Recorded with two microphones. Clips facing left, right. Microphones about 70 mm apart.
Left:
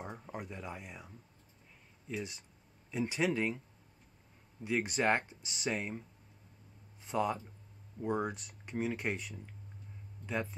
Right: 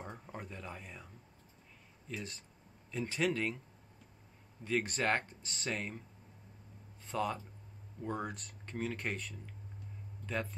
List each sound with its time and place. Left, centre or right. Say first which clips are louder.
0.0 s speech: left 3 dB; centre
4.7 s speech: left 2 dB; centre
7.1 s speech: left 3 dB; centre